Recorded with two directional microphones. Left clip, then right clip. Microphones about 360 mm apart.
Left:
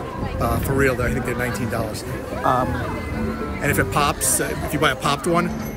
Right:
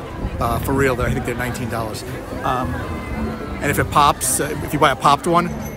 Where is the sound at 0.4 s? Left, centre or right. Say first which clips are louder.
Right 2 dB; centre.